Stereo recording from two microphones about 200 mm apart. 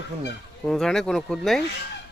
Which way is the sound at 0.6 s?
5° left (ahead or behind).